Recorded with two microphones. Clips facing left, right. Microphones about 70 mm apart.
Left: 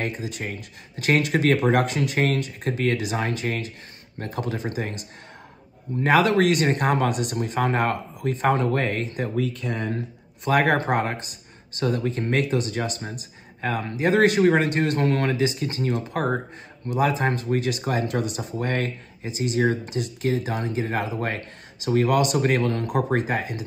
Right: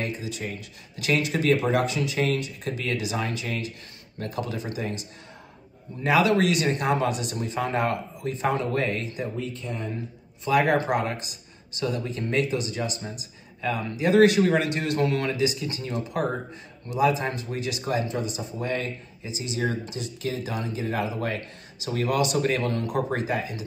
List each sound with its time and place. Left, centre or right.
0.0 s speech: left
6.0 s speech: left
10.5 s speech: left
18.0 s speech: left